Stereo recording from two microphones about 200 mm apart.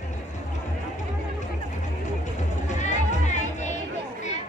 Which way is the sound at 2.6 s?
35° left (ahead or behind).